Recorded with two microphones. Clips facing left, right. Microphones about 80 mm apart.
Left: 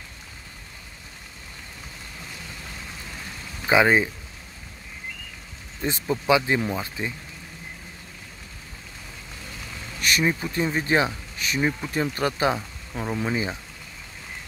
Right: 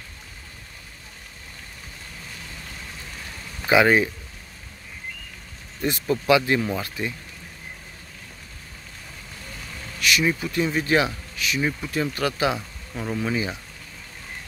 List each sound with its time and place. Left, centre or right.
3.7 s speech: left
5.8 s speech: centre
9.9 s vehicle: left
10.2 s speech: left
11.3 s speech: left
12.9 s speech: centre